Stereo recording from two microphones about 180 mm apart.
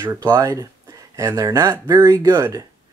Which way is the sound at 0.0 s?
15° right (ahead or behind).